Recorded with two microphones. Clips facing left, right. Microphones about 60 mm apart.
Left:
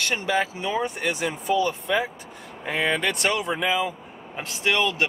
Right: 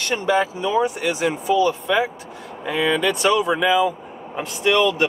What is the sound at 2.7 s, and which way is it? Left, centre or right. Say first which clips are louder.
Speech: right 4 dB; left.